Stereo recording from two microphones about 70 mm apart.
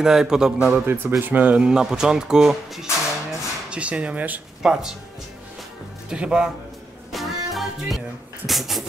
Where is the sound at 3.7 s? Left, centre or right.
Centre.